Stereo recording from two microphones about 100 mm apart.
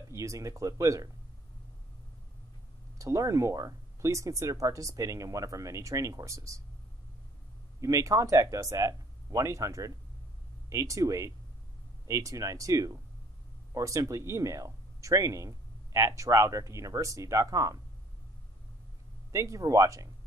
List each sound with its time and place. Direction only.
0.1 s speech: 30° right (ahead or behind)
3.0 s speech: 30° right (ahead or behind)
7.8 s speech: 30° right (ahead or behind)
19.3 s speech: 30° right (ahead or behind)